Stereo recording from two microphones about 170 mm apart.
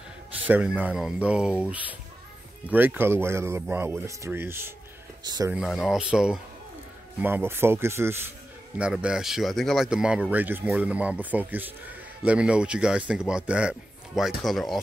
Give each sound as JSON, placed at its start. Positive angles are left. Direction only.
{"t": 0.5, "sound": "speech", "side_deg": -10}
{"t": 5.5, "sound": "speech", "side_deg": 0}